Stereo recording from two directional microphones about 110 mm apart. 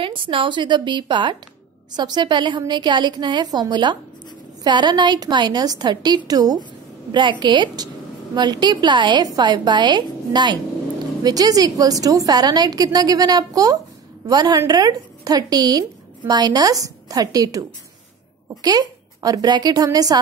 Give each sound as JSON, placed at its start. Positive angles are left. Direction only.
{"t": 0.0, "sound": "a woman's voice", "side_deg": -50}